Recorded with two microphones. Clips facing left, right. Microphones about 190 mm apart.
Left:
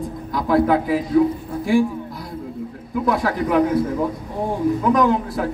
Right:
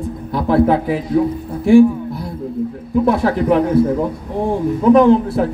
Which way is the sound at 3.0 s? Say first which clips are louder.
Right 5 dB; 25° right (ahead or behind).